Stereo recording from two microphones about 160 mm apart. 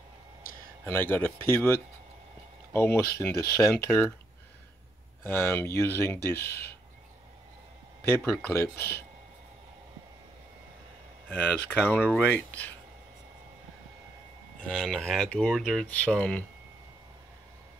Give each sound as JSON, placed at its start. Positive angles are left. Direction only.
{"t": 0.8, "sound": "speech", "side_deg": 15}
{"t": 5.2, "sound": "speech", "side_deg": 15}
{"t": 8.4, "sound": "speech", "side_deg": 15}
{"t": 11.2, "sound": "speech", "side_deg": 10}
{"t": 14.7, "sound": "speech", "side_deg": 5}